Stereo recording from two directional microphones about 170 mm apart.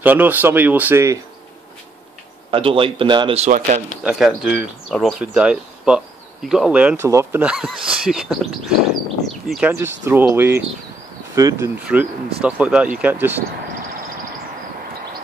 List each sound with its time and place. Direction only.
0.0 s speech: 10° right (ahead or behind)
2.5 s a man's voice: 30° right (ahead or behind)
3.4 s speech: 50° right (ahead or behind)
4.0 s speech: 5° right (ahead or behind)
7.1 s speech: 20° right (ahead or behind)
7.4 s speech: 5° right (ahead or behind)
9.7 s speech: 15° right (ahead or behind)
11.8 s speech: 10° right (ahead or behind)